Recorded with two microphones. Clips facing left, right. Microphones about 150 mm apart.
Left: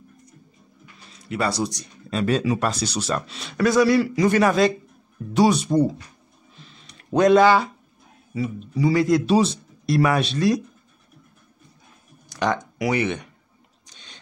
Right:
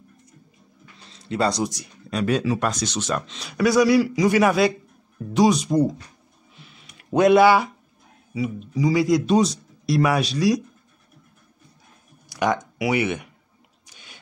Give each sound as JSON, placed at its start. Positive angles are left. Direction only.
{"t": 1.1, "sound": "speech", "side_deg": -25}
{"t": 2.0, "sound": "speech", "side_deg": 0}
{"t": 3.5, "sound": "a man's voice", "side_deg": -10}
{"t": 4.0, "sound": "speech", "side_deg": 0}
{"t": 4.3, "sound": "a man's voice", "side_deg": -10}
{"t": 5.3, "sound": "speech", "side_deg": 5}
{"t": 6.5, "sound": "a sound", "side_deg": -10}
{"t": 8.3, "sound": "speech", "side_deg": -5}
{"t": 12.4, "sound": "speech", "side_deg": -10}